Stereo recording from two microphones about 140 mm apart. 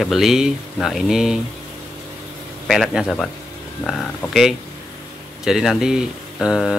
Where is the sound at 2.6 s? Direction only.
Centre (ahead or behind).